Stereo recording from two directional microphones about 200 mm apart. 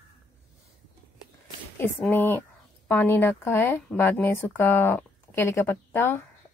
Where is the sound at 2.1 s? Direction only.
10° left (ahead or behind).